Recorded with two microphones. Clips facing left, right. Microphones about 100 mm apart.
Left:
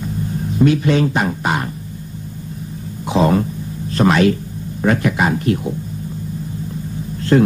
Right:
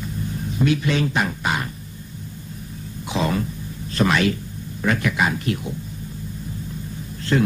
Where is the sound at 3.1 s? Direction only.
40° left (ahead or behind).